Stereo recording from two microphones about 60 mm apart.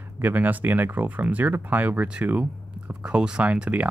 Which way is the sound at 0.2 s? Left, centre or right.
Right.